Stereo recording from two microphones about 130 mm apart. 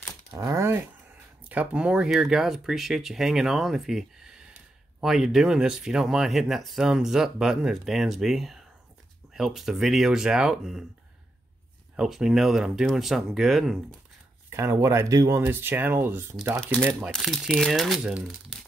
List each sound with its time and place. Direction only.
0.4 s a sound: 25° right (ahead or behind)
1.5 s speech: 10° right (ahead or behind)
12.0 s speech: 5° right (ahead or behind)
14.5 s speech: 20° right (ahead or behind)
17.1 s speech: centre (ahead or behind)